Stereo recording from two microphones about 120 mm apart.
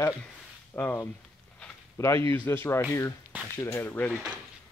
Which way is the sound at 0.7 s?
20° left (ahead or behind).